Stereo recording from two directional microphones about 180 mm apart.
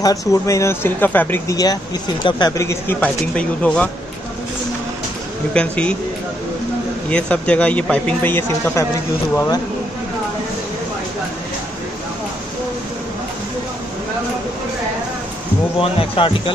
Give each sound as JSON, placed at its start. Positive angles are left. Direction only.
{"t": 0.3, "sound": "speech", "side_deg": 15}
{"t": 5.5, "sound": "speech", "side_deg": 5}
{"t": 7.1, "sound": "speech", "side_deg": 5}
{"t": 15.8, "sound": "speech", "side_deg": 30}